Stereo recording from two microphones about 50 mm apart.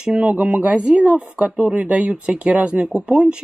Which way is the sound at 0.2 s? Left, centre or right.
Right.